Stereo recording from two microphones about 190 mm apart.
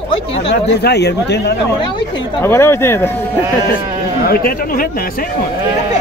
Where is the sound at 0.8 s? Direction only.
60° left (ahead or behind).